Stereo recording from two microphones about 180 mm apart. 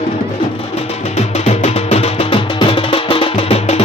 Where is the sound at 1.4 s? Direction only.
35° left (ahead or behind).